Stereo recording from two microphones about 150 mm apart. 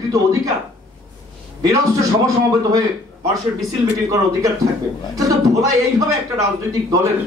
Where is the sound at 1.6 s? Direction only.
20° right (ahead or behind).